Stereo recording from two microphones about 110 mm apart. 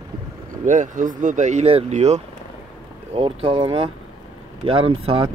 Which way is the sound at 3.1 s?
55° right (ahead or behind).